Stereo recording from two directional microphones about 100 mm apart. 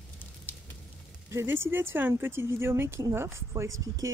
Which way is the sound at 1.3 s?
25° right (ahead or behind).